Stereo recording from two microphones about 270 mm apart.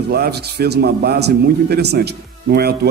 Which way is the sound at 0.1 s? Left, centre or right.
Right.